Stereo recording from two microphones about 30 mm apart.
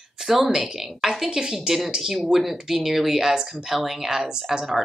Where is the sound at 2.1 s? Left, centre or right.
Centre.